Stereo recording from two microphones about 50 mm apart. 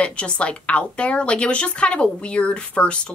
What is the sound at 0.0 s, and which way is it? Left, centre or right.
A woman's voice, left.